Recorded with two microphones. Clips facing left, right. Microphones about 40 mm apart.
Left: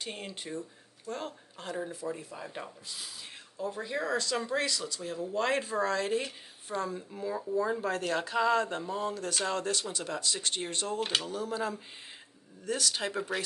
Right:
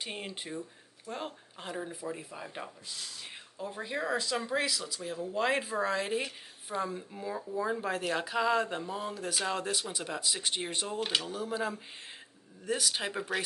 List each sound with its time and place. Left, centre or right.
0.0 s speech: centre
3.5 s speech: centre
11.0 s speech: centre